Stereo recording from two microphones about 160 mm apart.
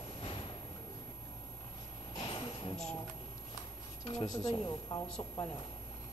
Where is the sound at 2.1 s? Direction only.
30° left (ahead or behind).